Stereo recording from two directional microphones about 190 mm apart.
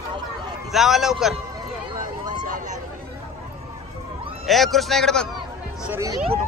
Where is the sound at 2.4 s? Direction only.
45° right (ahead or behind).